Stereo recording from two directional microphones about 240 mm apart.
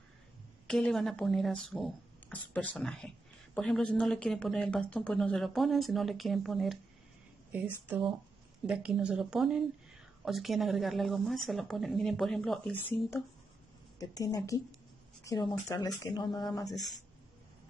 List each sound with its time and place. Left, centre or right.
0.7 s speech: centre
13.9 s speech: centre